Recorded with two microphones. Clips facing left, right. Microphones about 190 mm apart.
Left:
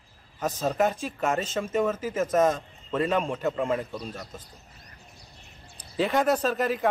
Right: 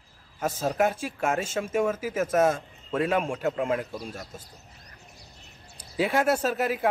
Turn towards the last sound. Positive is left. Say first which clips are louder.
# left 1 dB
turn(degrees=-10)  # may be behind; listen again after turning